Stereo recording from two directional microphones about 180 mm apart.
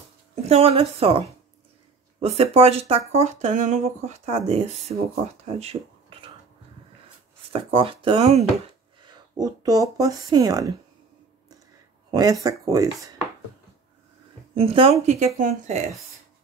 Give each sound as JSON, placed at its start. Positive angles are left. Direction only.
{"t": 0.5, "sound": "speech", "side_deg": -35}
{"t": 5.4, "sound": "a sound", "side_deg": -35}
{"t": 7.5, "sound": "speech", "side_deg": -30}
{"t": 9.0, "sound": "speech", "side_deg": -20}
{"t": 12.1, "sound": "speech", "side_deg": -20}
{"t": 14.5, "sound": "speech", "side_deg": -30}